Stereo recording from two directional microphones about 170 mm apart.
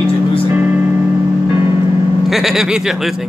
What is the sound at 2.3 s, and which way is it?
Speech, centre (ahead or behind).